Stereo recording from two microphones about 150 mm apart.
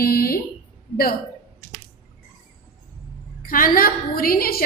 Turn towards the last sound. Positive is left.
turn(degrees=80)